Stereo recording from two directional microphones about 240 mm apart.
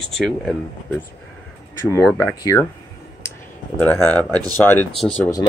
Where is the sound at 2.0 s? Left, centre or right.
Centre.